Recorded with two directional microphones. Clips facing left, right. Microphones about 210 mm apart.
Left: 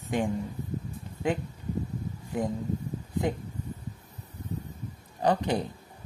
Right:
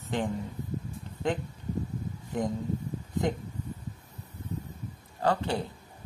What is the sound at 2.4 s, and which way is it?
Speech, 5° left (ahead or behind).